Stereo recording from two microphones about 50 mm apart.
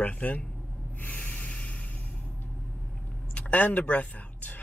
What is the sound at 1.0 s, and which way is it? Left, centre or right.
Spray, left.